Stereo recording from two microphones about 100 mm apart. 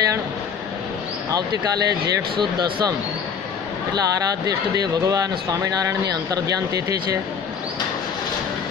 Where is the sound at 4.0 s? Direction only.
40° right (ahead or behind).